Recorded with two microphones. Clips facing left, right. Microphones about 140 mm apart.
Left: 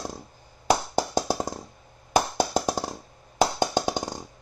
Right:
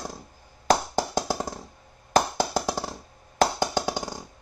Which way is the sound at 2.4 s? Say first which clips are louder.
Left 1 dB; 20° left (ahead or behind).